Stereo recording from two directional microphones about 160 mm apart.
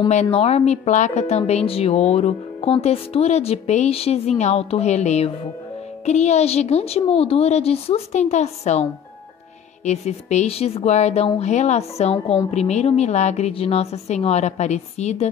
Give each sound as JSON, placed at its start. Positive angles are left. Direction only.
{"t": 0.1, "sound": "a woman's voice", "side_deg": 45}
{"t": 9.8, "sound": "speech", "side_deg": 45}